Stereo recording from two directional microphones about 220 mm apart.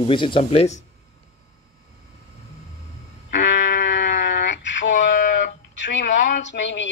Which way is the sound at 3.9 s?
55° left (ahead or behind).